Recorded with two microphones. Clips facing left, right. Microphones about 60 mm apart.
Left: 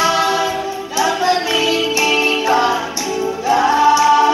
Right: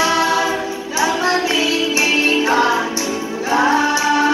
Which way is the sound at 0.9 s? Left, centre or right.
Right.